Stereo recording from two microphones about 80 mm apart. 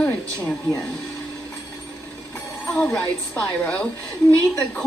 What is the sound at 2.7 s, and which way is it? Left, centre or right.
A woman's voice, centre.